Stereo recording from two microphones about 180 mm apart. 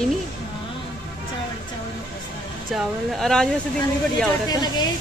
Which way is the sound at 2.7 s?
Centre (ahead or behind).